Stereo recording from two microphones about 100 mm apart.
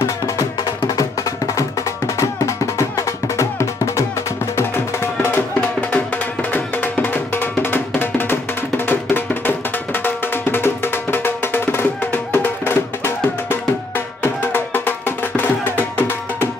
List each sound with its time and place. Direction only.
2.1 s music: 30° left (ahead or behind)